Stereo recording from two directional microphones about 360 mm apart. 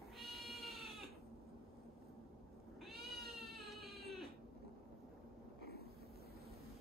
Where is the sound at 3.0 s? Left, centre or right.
Centre.